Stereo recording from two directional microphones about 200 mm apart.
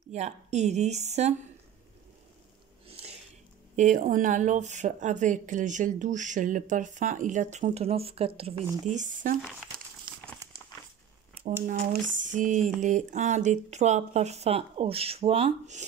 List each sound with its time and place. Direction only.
0.1 s speech: 35° right (ahead or behind)
2.9 s a sound: 30° right (ahead or behind)
3.7 s speech: 40° right (ahead or behind)
11.6 s speech: 40° right (ahead or behind)